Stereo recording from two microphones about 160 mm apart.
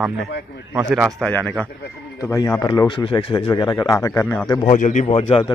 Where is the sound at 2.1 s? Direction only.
20° left (ahead or behind).